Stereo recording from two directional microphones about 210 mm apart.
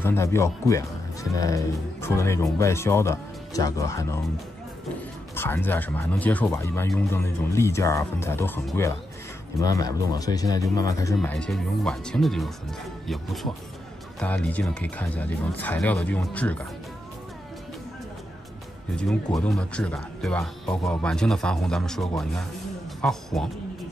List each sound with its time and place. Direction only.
0.0 s speech: 10° left (ahead or behind)
5.3 s speech: 10° left (ahead or behind)
11.1 s speech: 5° left (ahead or behind)
19.3 s speech: 5° left (ahead or behind)